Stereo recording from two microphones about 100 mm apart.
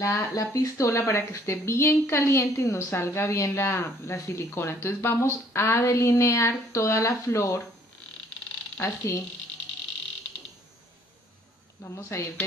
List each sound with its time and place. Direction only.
0.0 s speech: 30° left (ahead or behind)
8.8 s speech: 30° left (ahead or behind)
11.8 s speech: 20° left (ahead or behind)